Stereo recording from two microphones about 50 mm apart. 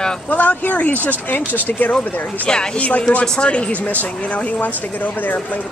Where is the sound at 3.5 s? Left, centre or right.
Left.